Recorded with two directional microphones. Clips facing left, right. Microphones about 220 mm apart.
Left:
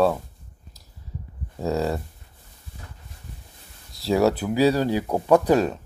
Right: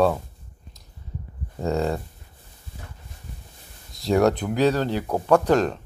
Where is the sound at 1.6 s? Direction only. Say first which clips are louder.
Even; centre (ahead or behind).